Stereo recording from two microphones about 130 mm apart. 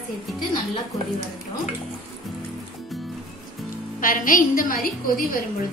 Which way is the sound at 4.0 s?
90° left.